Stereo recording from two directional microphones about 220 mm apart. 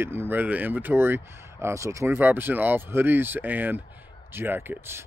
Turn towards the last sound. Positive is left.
turn(degrees=-10)  # may be behind; listen again after turning